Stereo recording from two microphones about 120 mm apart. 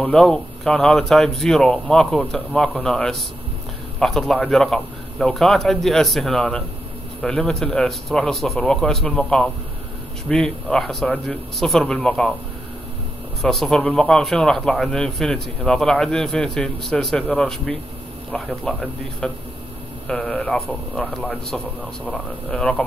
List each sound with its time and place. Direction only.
0.0 s a man's voice: 5° left (ahead or behind)
13.4 s a man's voice: 5° left (ahead or behind)